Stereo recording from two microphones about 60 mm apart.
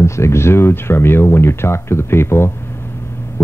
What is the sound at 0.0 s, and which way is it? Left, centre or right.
Speech, left.